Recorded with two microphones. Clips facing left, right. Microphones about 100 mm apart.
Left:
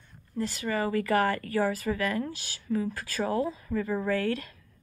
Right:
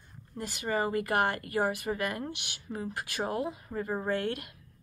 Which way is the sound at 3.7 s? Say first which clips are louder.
Left 4 dB; 30° right (ahead or behind).